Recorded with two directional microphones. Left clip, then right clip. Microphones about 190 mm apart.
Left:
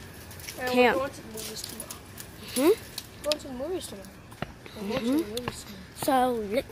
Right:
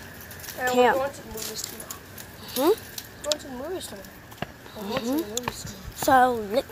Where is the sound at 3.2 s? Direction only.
15° left (ahead or behind).